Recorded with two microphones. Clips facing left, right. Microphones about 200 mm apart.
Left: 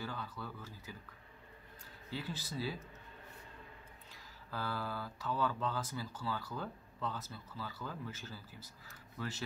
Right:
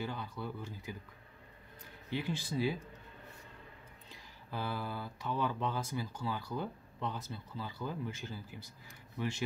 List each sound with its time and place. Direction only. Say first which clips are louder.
0.0 s speech: right 4 dB; 20° right (ahead or behind)
2.0 s speech: right 6 dB; 20° right (ahead or behind)
4.5 s speech: right 2 dB; 20° right (ahead or behind)